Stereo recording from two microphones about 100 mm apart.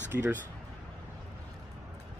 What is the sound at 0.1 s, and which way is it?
Speech, 20° right (ahead or behind).